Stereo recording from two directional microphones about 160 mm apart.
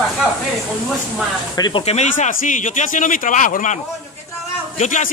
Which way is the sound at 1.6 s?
30° left (ahead or behind).